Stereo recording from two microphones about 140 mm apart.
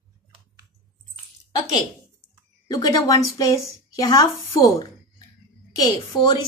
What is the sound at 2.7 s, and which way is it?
Speech, 25° left (ahead or behind).